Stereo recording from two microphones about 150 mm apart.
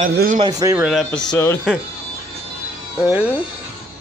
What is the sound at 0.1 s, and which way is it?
Speech, 80° right.